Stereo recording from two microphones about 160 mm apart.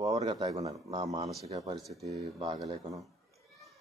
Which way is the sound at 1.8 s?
Centre (ahead or behind).